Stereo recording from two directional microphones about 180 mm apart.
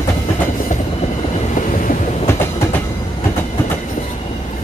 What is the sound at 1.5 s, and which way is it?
Train, 45° left (ahead or behind).